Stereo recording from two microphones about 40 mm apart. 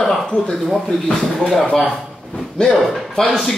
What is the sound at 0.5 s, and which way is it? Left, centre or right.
Speech, centre.